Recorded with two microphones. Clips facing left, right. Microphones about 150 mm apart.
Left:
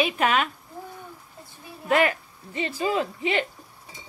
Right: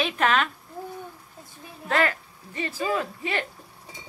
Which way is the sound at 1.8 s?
15° left (ahead or behind).